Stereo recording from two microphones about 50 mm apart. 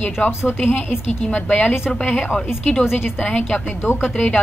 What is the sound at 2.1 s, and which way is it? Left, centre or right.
Speech, centre.